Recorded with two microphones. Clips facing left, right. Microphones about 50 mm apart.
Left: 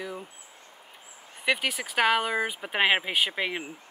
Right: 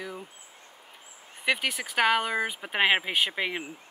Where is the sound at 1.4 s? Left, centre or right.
Centre.